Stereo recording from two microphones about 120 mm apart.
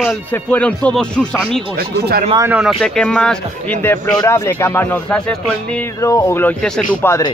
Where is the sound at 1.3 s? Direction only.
5° right (ahead or behind).